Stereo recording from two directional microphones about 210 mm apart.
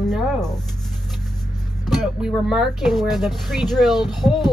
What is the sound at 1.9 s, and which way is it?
Speech, centre (ahead or behind).